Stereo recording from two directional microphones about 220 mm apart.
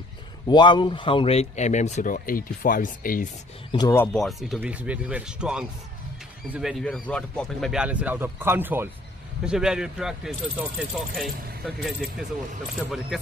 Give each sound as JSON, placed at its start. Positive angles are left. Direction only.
{"t": 0.5, "sound": "speech", "side_deg": 20}
{"t": 3.7, "sound": "speech", "side_deg": 15}